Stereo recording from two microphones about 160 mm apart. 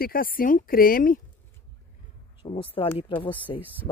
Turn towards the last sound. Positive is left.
turn(degrees=-10)  # may be behind; listen again after turning